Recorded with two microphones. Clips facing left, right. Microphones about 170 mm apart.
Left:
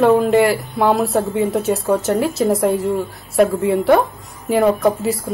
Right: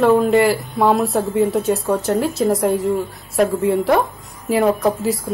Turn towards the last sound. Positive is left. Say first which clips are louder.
# left 1 dB
turn(degrees=0)  # may be behind; listen again after turning